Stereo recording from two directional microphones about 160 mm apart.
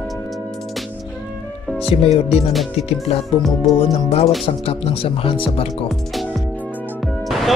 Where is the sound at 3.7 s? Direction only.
40° left (ahead or behind).